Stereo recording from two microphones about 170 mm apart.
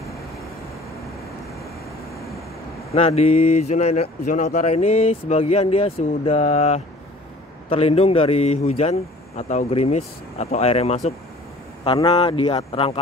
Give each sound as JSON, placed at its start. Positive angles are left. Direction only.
{"t": 2.9, "sound": "speech", "side_deg": 35}